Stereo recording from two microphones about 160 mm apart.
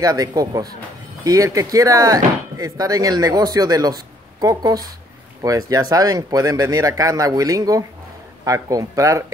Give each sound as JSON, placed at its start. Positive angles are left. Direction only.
{"t": 0.0, "sound": "speech", "side_deg": -25}